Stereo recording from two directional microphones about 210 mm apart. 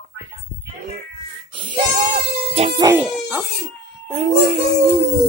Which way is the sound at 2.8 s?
10° right (ahead or behind).